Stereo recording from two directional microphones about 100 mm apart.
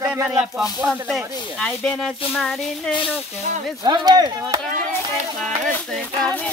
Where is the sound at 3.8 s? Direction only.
45° right (ahead or behind).